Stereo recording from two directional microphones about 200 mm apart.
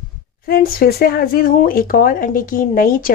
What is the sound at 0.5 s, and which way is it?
Speech, 45° left (ahead or behind).